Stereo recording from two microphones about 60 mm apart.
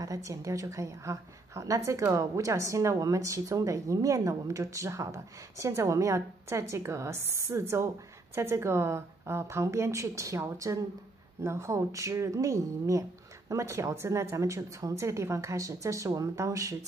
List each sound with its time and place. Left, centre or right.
0.0 s a woman's voice: right